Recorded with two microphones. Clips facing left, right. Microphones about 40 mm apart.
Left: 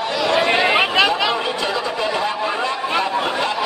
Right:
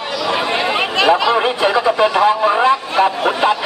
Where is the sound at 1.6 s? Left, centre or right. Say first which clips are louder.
Right 8 dB; right.